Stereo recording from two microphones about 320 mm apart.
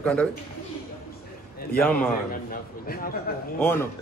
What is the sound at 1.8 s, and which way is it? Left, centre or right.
Speech, centre.